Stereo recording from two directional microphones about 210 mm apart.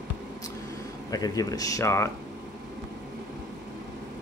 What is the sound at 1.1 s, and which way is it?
Speech, 15° left (ahead or behind).